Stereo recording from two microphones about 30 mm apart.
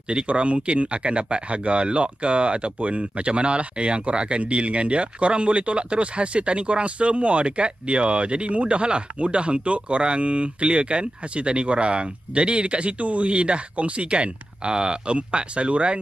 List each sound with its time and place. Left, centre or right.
0.1 s speech: right
15.1 s speech: right